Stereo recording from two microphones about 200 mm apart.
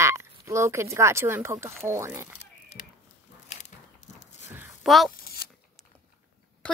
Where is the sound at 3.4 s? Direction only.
35° left (ahead or behind).